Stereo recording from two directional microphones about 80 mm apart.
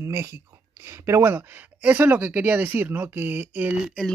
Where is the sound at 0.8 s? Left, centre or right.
Right.